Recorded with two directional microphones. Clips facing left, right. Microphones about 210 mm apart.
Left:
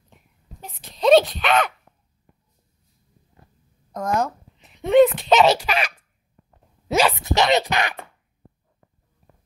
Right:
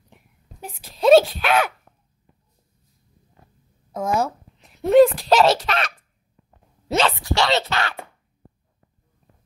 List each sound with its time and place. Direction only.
0.6 s speech: 5° right (ahead or behind)
3.9 s speech: 5° right (ahead or behind)
4.6 s a sound: centre (ahead or behind)
5.2 s speech: centre (ahead or behind)
7.0 s speech: 15° left (ahead or behind)